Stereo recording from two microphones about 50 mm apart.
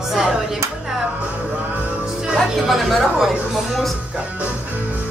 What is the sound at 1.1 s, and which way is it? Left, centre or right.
Music, right.